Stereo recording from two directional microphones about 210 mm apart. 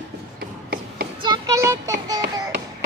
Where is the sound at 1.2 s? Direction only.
20° right (ahead or behind).